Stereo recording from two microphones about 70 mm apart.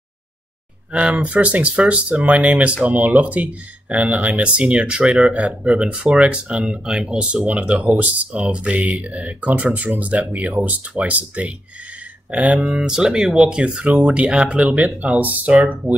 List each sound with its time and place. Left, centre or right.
0.9 s speech: centre
12.5 s speech: centre